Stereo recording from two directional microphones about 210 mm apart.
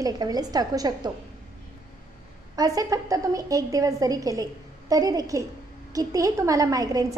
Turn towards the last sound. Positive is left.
turn(degrees=-15)  # may be behind; listen again after turning